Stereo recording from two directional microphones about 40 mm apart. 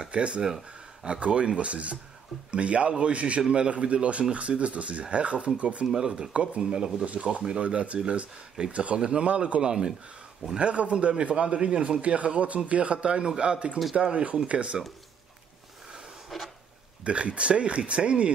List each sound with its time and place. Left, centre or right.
0.0 s speech: right
6.6 s speech: centre
7.6 s speech: right
9.6 s speech: centre
10.6 s speech: right
16.3 s a sound: centre
17.0 s speech: right